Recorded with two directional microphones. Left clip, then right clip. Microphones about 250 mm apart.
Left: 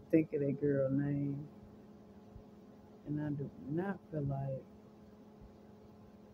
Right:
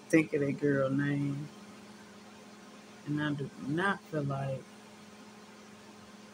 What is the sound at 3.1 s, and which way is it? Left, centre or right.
Speech, right.